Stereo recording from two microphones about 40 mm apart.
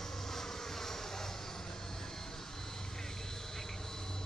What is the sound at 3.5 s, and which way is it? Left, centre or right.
Vehicle, centre.